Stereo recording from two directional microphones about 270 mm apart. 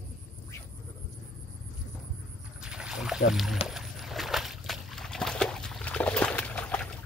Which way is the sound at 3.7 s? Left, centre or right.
Centre.